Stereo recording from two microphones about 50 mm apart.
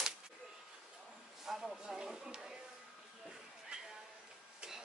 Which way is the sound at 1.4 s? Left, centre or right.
Centre.